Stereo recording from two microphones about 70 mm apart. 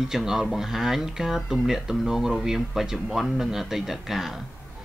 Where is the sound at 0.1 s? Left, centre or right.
Centre.